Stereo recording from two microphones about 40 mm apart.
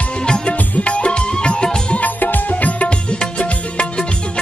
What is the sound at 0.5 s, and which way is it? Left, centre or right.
Music, left.